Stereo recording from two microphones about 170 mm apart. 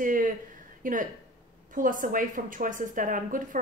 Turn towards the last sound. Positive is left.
turn(degrees=-50)  # may be behind; listen again after turning